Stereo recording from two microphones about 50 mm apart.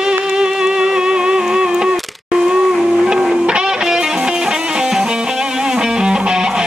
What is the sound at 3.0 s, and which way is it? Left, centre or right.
Music, centre.